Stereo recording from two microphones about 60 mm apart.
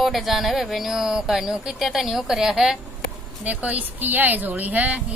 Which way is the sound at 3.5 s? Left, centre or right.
Right.